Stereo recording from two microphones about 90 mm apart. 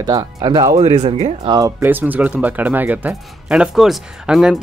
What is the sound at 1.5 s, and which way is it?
Speech, 65° right (ahead or behind).